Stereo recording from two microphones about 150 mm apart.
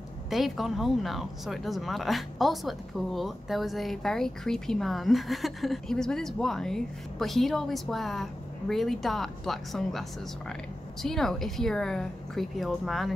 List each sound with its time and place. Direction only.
0.3 s speech: centre (ahead or behind)